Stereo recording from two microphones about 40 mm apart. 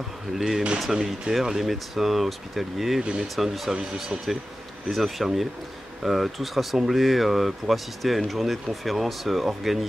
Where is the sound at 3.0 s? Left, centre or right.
Centre.